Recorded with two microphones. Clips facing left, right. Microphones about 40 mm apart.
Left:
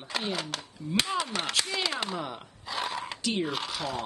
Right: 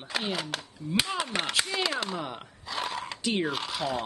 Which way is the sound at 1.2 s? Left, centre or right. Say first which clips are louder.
Right 2 dB; right.